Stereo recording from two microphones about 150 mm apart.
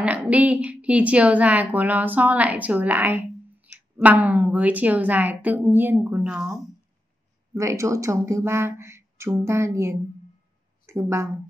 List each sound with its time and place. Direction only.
0.0 s a woman's voice: 10° right (ahead or behind)
7.5 s speech: 20° right (ahead or behind)